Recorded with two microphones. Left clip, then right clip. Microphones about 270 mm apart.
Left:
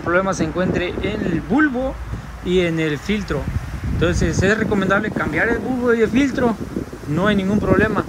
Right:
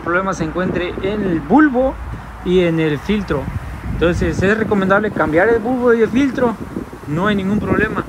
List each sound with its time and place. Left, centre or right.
0.1 s speech: centre